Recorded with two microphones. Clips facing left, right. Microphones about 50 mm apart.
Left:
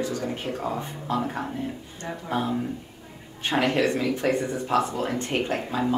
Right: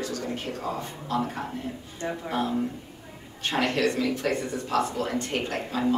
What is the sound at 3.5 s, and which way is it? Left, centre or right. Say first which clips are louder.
Speech: left 2 dB; centre.